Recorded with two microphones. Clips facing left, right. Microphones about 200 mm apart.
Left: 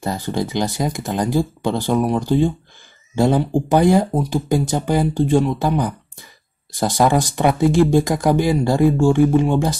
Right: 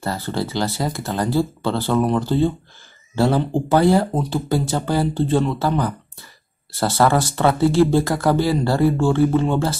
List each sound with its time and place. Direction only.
0.0 s speech: 15° left (ahead or behind)